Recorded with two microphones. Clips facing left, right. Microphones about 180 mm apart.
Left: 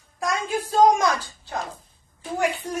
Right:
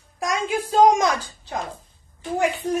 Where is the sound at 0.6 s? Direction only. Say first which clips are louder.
Right 1 dB; 15° right (ahead or behind).